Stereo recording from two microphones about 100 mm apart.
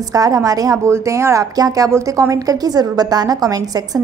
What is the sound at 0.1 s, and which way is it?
A woman's voice, 35° right (ahead or behind).